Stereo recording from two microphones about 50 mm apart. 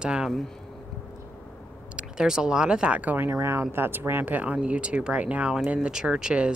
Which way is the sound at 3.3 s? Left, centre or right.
Right.